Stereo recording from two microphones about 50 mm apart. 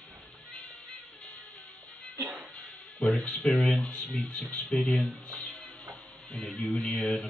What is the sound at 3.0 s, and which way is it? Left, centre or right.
Speech, centre.